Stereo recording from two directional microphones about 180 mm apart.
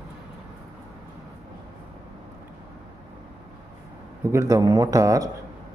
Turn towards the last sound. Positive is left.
turn(degrees=-20)  # may be behind; listen again after turning